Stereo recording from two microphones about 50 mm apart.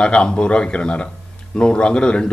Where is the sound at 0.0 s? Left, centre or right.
Centre.